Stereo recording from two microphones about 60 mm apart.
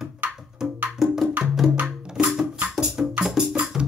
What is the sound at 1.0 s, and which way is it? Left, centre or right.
Music, centre.